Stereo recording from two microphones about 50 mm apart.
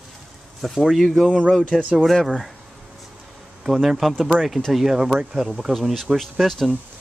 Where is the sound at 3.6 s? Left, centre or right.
Centre.